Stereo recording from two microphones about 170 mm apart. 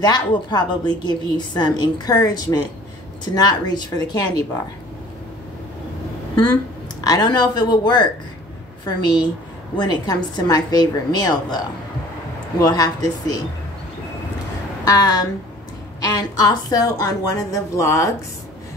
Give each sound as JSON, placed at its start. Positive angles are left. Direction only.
{"t": 0.0, "sound": "a woman's voice", "side_deg": 25}
{"t": 7.0, "sound": "a woman's voice", "side_deg": 25}
{"t": 14.9, "sound": "a woman's voice", "side_deg": 20}